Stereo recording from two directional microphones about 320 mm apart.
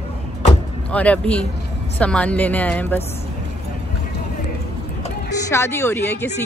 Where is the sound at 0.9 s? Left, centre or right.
Centre.